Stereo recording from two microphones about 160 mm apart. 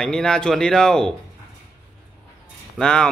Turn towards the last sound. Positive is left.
turn(degrees=5)  # may be behind; listen again after turning